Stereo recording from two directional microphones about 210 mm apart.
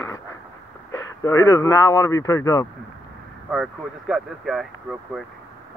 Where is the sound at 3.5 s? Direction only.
Centre (ahead or behind).